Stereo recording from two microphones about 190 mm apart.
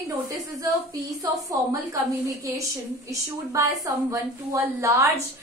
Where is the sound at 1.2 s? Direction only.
15° right (ahead or behind).